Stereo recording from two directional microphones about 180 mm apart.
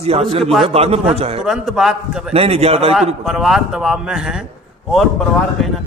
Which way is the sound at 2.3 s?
35° right (ahead or behind).